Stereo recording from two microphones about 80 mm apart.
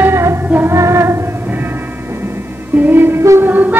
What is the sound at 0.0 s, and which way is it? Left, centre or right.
Music, right.